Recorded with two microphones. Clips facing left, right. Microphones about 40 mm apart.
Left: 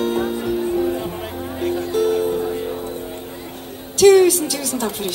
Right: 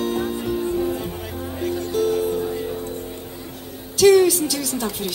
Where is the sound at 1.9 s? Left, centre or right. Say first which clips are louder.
Left 2 dB; centre.